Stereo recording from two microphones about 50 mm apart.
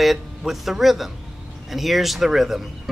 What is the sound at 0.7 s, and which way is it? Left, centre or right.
Speech, centre.